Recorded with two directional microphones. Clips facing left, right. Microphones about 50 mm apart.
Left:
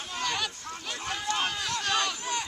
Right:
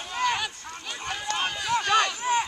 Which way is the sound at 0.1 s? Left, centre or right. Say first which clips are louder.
Right 5 dB; centre.